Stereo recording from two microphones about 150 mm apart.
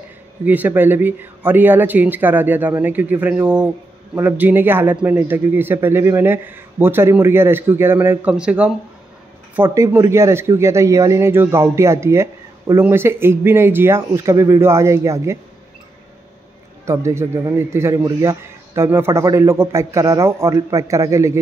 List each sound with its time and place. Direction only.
0.5 s speech: 10° right (ahead or behind)
16.8 s a man's voice: 20° right (ahead or behind)